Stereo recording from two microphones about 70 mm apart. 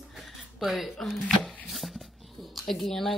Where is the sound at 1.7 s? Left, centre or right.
Centre.